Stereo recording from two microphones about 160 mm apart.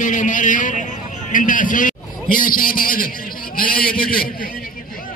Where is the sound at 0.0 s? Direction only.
55° left (ahead or behind).